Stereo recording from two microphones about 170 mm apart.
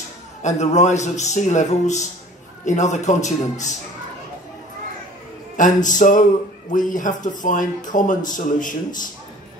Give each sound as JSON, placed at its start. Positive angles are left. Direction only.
{"t": 0.4, "sound": "speech", "side_deg": 45}
{"t": 5.6, "sound": "speech", "side_deg": 50}